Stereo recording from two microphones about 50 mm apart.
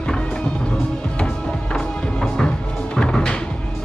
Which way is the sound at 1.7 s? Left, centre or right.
Centre.